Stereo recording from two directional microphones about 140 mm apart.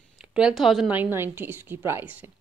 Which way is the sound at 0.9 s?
15° right (ahead or behind).